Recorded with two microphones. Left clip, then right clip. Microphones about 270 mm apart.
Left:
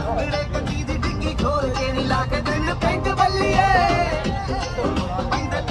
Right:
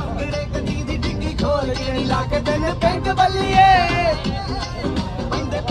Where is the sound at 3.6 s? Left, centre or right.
Centre.